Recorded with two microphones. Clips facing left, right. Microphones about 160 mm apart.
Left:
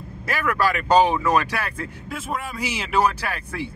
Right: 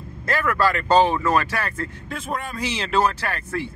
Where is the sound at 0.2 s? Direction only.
10° left (ahead or behind).